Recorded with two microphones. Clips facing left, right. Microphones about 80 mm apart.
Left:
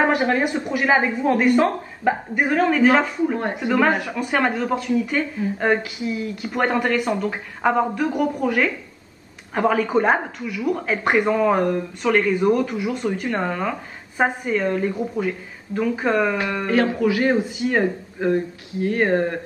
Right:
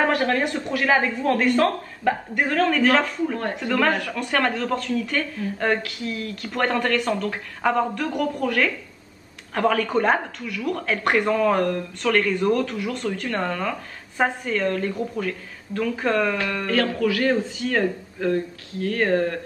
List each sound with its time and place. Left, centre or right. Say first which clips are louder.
0.0 s speech: left 2 dB; centre